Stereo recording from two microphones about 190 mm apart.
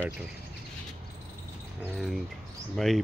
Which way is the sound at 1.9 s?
Centre (ahead or behind).